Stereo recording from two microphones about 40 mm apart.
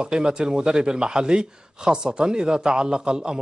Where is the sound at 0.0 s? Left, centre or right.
Centre.